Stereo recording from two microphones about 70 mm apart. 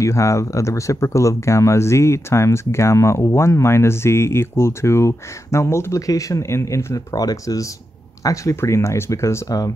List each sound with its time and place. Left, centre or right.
0.0 s speech: left
7.2 s speech: left
8.5 s speech: left